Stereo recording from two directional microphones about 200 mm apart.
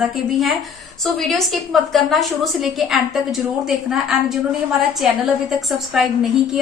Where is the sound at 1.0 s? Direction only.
Centre (ahead or behind).